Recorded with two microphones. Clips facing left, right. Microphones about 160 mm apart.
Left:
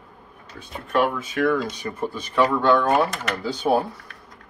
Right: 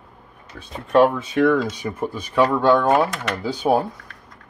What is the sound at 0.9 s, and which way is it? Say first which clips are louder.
Speech: right 6 dB; 30° right (ahead or behind).